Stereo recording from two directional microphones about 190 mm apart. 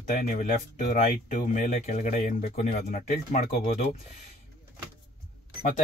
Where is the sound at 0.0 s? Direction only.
45° left (ahead or behind).